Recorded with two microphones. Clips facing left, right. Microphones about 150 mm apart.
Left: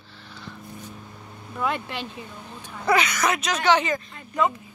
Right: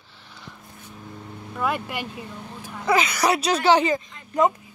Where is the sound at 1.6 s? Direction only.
5° right (ahead or behind).